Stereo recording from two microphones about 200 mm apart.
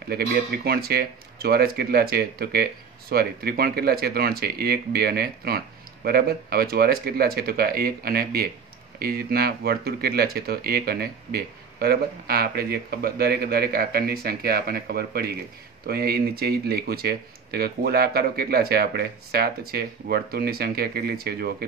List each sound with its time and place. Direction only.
0.1 s speech: 50° right (ahead or behind)